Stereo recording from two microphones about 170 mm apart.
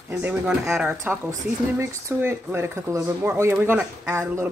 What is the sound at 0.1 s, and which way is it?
Speech, 5° right (ahead or behind).